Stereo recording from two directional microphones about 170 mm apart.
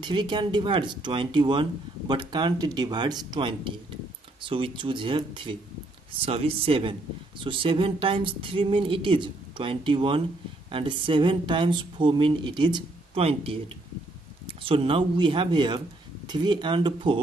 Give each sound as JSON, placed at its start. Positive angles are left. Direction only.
{"t": 0.0, "sound": "a man's voice", "side_deg": -25}